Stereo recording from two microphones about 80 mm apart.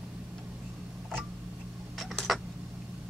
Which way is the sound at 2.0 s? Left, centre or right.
Centre.